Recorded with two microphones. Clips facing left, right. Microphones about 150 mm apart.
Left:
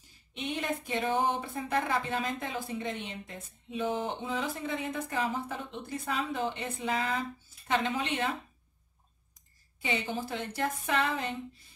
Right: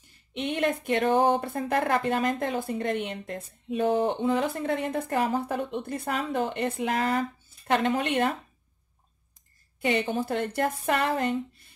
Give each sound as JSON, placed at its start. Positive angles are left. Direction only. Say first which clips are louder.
{"t": 0.3, "sound": "speech", "louder": "right 7 dB", "side_deg": -65}
{"t": 9.8, "sound": "speech", "louder": "right 7 dB", "side_deg": -55}